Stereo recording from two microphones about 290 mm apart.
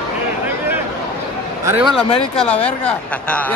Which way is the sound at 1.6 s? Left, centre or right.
Centre.